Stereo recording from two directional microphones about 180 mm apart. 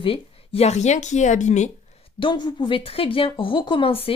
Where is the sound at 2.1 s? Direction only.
25° left (ahead or behind).